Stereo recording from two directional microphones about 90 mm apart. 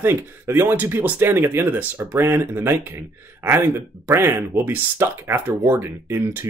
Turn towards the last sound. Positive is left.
turn(degrees=-30)  # may be behind; listen again after turning